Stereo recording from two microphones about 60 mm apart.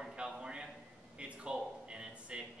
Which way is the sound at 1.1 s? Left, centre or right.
Centre.